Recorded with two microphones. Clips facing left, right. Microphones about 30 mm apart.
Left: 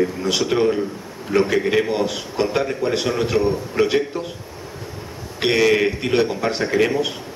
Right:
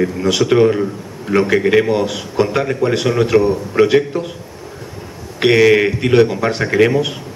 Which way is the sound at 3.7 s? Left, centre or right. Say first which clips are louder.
Right 8 dB; right.